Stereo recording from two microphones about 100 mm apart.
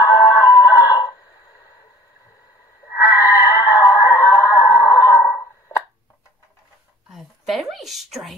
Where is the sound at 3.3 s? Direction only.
40° left (ahead or behind).